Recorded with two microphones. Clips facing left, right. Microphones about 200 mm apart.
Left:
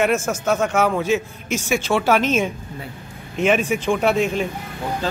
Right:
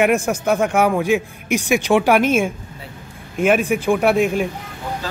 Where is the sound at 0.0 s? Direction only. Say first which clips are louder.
Right 3 dB; 15° right (ahead or behind).